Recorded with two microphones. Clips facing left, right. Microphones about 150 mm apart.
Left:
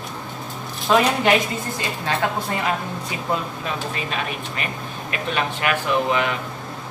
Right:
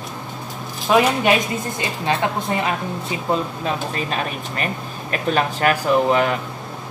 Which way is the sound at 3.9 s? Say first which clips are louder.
Right 3 dB; 40° right (ahead or behind).